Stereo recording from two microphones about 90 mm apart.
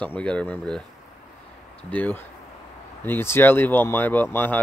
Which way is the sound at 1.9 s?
20° left (ahead or behind).